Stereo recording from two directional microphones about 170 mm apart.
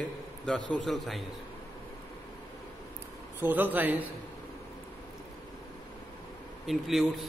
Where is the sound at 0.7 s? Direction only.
Centre (ahead or behind).